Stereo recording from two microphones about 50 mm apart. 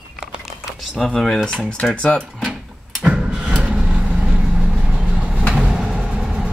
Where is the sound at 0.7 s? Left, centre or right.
Centre.